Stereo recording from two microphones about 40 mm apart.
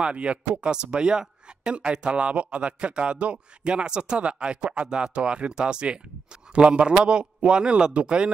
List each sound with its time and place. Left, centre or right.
0.0 s a man's voice: right